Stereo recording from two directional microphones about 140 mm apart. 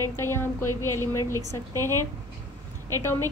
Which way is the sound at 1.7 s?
25° right (ahead or behind).